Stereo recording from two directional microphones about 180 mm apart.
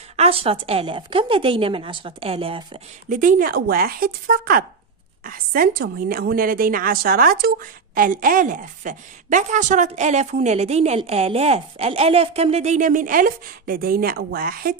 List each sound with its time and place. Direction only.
0.1 s a woman's voice: 35° right (ahead or behind)
3.1 s a woman's voice: 50° right (ahead or behind)